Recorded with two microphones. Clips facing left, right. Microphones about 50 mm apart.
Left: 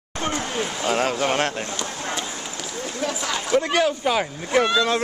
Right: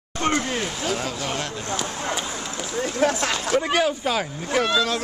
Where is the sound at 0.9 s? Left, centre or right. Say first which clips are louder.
Left 6 dB; left.